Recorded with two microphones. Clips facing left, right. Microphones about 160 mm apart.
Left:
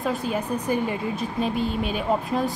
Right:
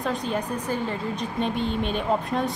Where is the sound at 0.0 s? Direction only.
5° left (ahead or behind).